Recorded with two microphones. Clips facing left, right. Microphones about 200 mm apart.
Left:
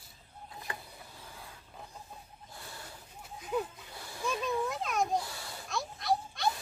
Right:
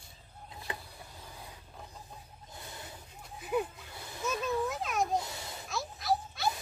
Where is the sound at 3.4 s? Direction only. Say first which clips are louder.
Right 2 dB; 10° right (ahead or behind).